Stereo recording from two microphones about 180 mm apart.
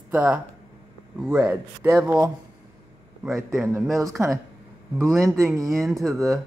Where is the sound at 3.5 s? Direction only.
15° right (ahead or behind).